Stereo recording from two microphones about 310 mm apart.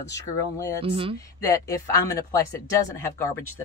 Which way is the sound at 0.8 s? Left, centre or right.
Centre.